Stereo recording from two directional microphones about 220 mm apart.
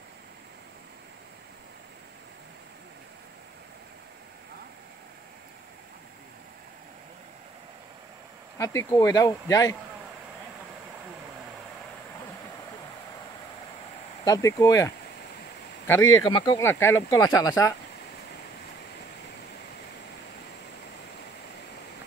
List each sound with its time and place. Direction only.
8.5 s speech: 15° left (ahead or behind)
14.2 s speech: 15° left (ahead or behind)
16.2 s speech: 20° left (ahead or behind)